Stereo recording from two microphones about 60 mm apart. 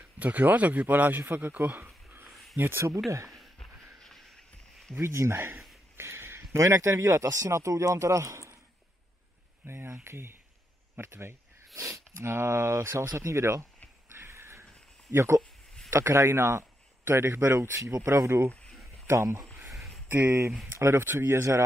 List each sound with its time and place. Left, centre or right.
0.2 s a man's voice: right
3.1 s speech: right
5.0 s speech: right
5.9 s a sound: right
6.6 s speech: right
7.2 s speech: right
9.7 s speech: right
11.7 s speech: right
14.1 s dog: right
15.0 s speech: right
17.7 s speech: right
18.5 s a sound: centre
19.0 s speech: right
20.1 s speech: right